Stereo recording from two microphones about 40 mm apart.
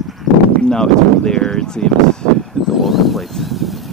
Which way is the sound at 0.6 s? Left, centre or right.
Centre.